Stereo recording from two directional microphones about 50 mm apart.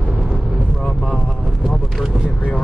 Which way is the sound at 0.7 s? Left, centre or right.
Centre.